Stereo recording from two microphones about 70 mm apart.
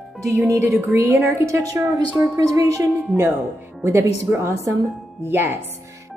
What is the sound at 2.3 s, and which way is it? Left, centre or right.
Speech, right.